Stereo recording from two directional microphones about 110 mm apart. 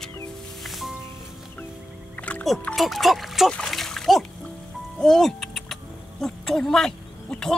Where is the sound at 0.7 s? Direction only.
Centre (ahead or behind).